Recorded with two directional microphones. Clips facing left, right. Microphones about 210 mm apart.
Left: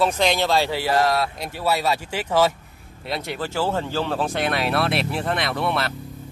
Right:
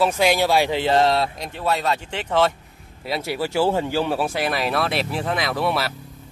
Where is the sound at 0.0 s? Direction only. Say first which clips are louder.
Right 2 dB; 10° right (ahead or behind); by 1.3 s 25° right (ahead or behind).